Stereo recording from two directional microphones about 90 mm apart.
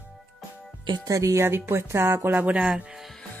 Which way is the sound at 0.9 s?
40° right (ahead or behind).